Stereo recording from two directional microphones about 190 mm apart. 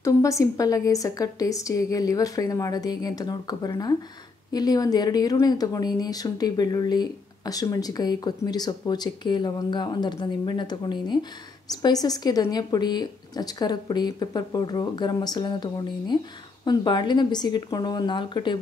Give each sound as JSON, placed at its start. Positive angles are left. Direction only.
{"t": 0.0, "sound": "a woman's voice", "side_deg": 15}